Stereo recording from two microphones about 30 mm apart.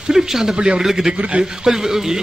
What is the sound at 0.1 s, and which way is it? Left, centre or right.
A man's voice, centre.